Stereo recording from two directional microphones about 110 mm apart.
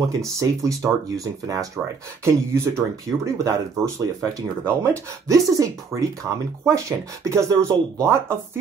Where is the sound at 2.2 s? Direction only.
25° right (ahead or behind).